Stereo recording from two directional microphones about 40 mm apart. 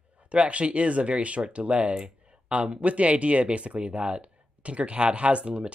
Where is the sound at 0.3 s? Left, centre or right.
Right.